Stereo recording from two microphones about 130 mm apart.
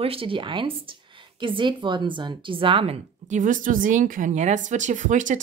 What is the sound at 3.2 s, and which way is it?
A woman's voice, 75° right (ahead or behind).